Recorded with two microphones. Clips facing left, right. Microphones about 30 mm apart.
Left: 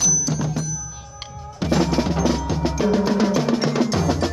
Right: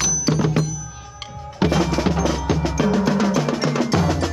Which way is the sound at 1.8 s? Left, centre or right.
Centre.